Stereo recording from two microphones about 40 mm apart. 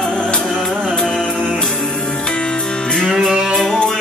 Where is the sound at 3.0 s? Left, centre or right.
Centre.